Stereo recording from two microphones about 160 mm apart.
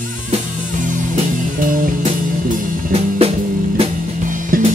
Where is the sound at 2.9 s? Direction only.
40° right (ahead or behind).